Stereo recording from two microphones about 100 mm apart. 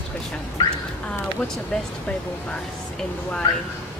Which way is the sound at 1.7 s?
5° left (ahead or behind).